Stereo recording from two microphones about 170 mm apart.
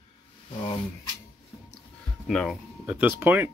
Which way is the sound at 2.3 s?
Centre (ahead or behind).